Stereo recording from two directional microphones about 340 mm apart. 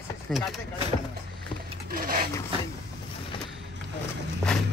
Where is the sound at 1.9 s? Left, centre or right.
Right.